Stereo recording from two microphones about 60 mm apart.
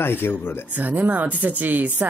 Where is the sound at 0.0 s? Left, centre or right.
Left.